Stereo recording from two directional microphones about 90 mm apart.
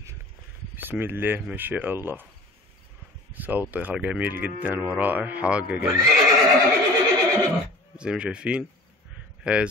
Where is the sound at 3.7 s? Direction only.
15° right (ahead or behind).